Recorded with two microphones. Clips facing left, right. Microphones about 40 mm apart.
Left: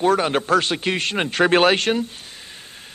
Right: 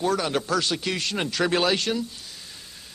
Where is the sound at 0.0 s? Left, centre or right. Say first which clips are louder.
Left 6 dB; left.